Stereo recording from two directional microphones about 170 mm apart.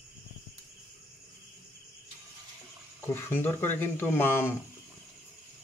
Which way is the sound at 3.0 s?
15° left (ahead or behind).